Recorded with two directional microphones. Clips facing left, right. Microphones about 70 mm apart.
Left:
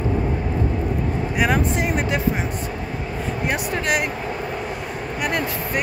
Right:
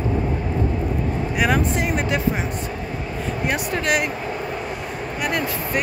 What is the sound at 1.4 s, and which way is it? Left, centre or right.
Speech, left.